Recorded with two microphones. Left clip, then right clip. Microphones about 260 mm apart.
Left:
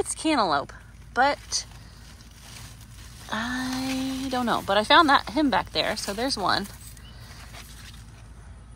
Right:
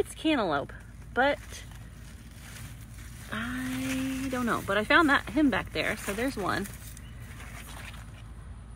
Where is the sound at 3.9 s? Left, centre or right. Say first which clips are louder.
Left 3 dB; centre.